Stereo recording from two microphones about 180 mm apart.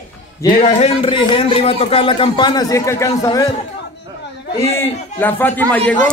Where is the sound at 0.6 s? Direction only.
35° left (ahead or behind); by 3.4 s 20° left (ahead or behind).